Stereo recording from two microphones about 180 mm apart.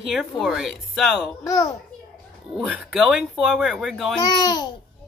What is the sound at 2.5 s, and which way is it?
A woman's voice, 5° right (ahead or behind).